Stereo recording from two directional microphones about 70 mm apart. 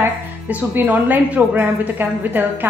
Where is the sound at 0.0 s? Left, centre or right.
Right.